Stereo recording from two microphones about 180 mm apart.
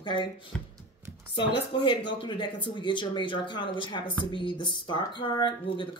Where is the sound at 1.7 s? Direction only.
25° left (ahead or behind).